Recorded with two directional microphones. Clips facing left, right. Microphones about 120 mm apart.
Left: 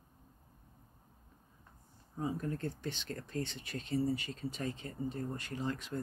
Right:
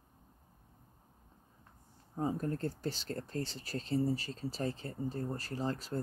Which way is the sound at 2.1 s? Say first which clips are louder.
Right 2 dB; 40° right (ahead or behind).